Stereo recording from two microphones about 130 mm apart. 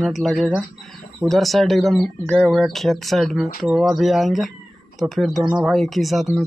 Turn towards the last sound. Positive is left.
turn(degrees=0)  # may be behind; listen again after turning